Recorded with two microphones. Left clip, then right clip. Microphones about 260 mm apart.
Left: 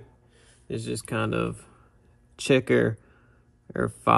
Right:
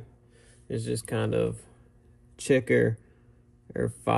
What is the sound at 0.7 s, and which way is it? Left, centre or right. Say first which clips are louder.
Speech: even; left.